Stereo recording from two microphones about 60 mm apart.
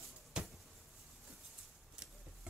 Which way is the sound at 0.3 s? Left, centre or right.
Centre.